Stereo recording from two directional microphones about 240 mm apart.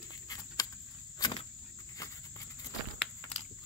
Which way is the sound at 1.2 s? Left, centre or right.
Left.